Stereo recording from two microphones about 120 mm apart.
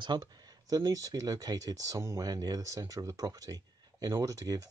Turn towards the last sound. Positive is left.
turn(degrees=-30)  # may be behind; listen again after turning